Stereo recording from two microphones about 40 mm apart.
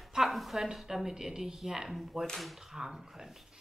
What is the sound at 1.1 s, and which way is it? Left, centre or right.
A woman's voice, centre.